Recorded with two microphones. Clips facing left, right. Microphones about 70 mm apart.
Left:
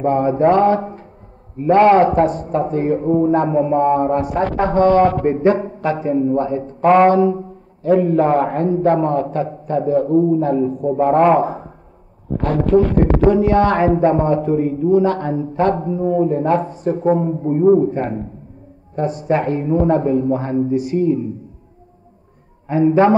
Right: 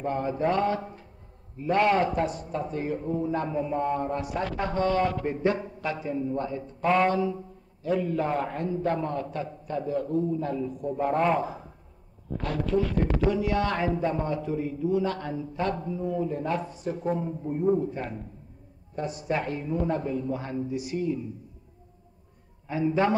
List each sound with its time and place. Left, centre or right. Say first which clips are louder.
0.0 s a man's voice: left 12 dB; left
22.7 s a man's voice: left 12 dB; left